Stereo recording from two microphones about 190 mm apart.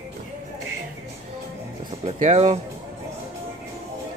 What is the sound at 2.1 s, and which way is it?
Speech, 40° right (ahead or behind).